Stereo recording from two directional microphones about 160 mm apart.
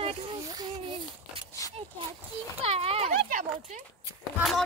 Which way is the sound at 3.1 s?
60° right (ahead or behind).